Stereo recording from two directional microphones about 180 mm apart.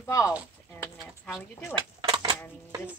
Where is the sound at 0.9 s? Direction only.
Centre (ahead or behind).